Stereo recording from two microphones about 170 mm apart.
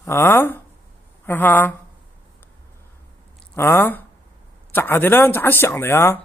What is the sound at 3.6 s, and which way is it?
Speech, 10° left (ahead or behind).